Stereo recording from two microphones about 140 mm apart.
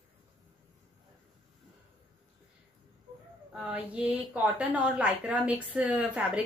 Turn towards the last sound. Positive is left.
turn(degrees=-10)  # may be behind; listen again after turning